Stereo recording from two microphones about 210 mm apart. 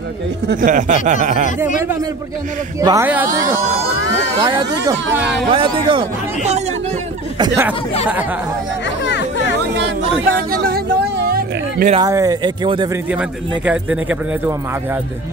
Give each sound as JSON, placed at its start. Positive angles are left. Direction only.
{"t": 0.5, "sound": "speech", "side_deg": -40}
{"t": 2.8, "sound": "speech", "side_deg": -15}
{"t": 4.4, "sound": "speech", "side_deg": -20}
{"t": 5.1, "sound": "speech", "side_deg": -5}
{"t": 5.5, "sound": "speech", "side_deg": -25}
{"t": 9.0, "sound": "chatter", "side_deg": 55}
{"t": 9.8, "sound": "a sound", "side_deg": -50}
{"t": 11.9, "sound": "speech", "side_deg": -15}
{"t": 13.1, "sound": "speech", "side_deg": -5}